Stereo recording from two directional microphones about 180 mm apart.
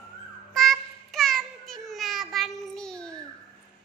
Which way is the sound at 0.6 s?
Centre (ahead or behind).